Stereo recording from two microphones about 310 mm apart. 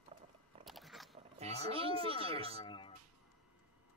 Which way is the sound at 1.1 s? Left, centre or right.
Centre.